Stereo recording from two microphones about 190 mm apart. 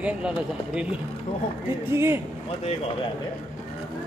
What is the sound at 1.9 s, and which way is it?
Speech, 10° right (ahead or behind).